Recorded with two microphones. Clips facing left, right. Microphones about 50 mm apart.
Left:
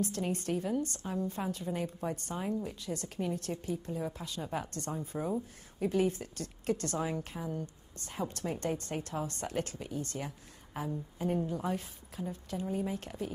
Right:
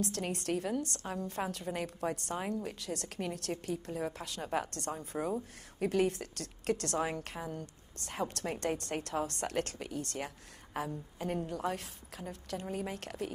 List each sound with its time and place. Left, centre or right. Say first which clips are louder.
0.0 s a woman's voice: left 2 dB; right
5.2 s speech: right 1 dB; right
5.8 s a woman's voice: even; right